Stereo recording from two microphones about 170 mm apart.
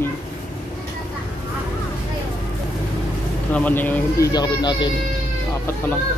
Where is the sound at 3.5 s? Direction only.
10° left (ahead or behind).